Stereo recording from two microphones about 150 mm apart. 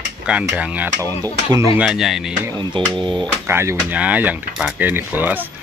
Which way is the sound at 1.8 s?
Centre (ahead or behind).